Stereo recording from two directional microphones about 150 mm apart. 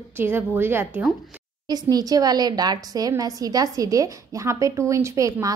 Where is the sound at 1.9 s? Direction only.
25° right (ahead or behind).